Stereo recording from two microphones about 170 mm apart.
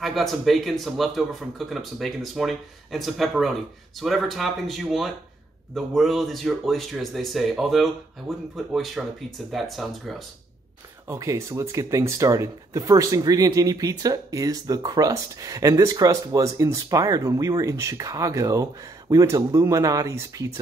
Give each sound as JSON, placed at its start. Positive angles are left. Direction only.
{"t": 0.0, "sound": "speech", "side_deg": 0}
{"t": 11.1, "sound": "speech", "side_deg": -15}